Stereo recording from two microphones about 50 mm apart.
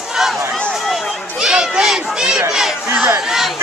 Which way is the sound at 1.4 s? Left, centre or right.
Centre.